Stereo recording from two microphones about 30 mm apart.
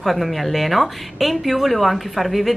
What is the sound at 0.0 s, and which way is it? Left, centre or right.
A woman's voice, centre.